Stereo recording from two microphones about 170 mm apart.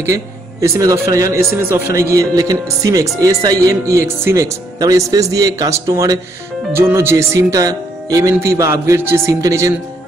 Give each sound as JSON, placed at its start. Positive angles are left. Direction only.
{"t": 0.0, "sound": "speech", "side_deg": -15}